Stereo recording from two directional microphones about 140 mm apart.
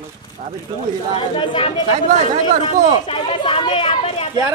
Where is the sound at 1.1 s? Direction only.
40° left (ahead or behind).